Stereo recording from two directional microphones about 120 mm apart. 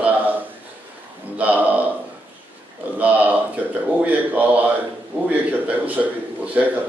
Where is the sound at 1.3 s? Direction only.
10° right (ahead or behind).